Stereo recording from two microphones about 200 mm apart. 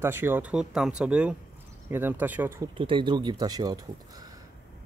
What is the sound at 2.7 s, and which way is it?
Speech, 25° right (ahead or behind).